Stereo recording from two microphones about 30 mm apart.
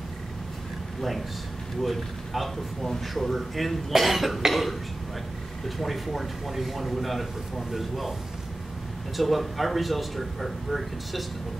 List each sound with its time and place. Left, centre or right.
1.8 s a man's voice: centre
5.8 s a man's voice: centre
9.1 s a man's voice: centre